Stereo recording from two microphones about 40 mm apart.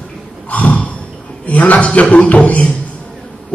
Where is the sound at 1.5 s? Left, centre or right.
Left.